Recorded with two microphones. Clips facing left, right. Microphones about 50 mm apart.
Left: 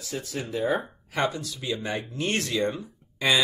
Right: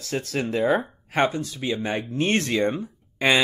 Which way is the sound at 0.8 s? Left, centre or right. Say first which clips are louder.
Right 5 dB; right.